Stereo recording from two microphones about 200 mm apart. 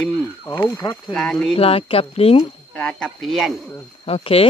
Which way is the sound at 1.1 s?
5° left (ahead or behind).